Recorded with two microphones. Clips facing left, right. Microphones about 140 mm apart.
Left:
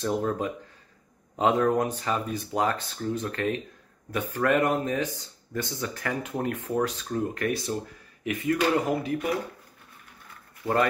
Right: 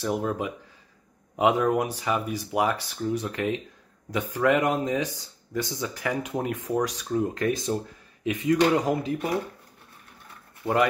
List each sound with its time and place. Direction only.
0.0 s speech: 10° right (ahead or behind)
10.6 s speech: 15° right (ahead or behind)